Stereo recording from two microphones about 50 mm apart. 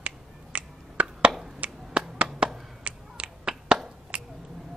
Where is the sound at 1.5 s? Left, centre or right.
Right.